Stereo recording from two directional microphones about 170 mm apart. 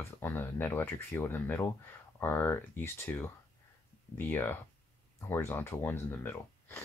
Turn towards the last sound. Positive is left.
turn(degrees=10)  # may be behind; listen again after turning